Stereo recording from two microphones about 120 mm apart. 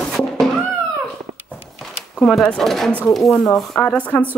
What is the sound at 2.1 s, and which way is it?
Speech, 5° left (ahead or behind).